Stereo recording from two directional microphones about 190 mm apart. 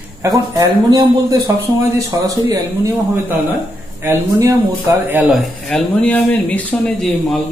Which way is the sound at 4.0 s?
15° right (ahead or behind).